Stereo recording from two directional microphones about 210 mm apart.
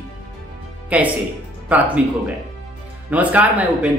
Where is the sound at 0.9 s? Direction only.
5° right (ahead or behind).